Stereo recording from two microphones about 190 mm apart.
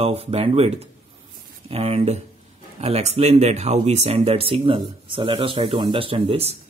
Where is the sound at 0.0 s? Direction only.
30° right (ahead or behind).